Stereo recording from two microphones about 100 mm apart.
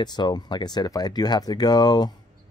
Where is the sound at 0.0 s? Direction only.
45° left (ahead or behind).